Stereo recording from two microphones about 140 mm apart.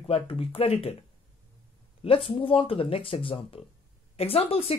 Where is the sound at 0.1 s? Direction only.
45° left (ahead or behind).